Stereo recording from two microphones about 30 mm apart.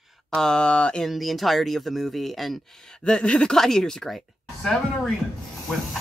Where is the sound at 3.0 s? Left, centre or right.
Left.